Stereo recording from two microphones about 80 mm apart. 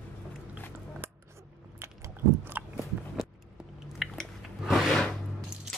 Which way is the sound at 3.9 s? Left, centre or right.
Centre.